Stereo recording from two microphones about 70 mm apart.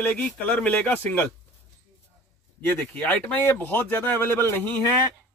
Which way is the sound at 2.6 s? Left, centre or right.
Left.